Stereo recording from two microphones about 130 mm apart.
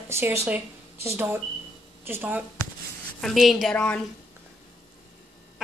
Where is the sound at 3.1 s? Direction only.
Centre (ahead or behind).